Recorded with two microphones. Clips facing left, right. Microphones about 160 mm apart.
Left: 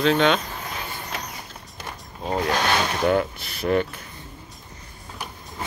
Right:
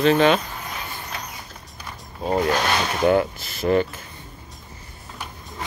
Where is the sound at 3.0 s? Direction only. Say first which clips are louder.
Right 5 dB; 5° right (ahead or behind).